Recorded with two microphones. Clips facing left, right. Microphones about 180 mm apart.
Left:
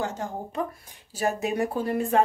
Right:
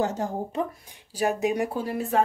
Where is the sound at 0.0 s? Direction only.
40° right (ahead or behind).